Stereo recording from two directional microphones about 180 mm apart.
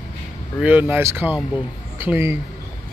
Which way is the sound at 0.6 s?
10° right (ahead or behind).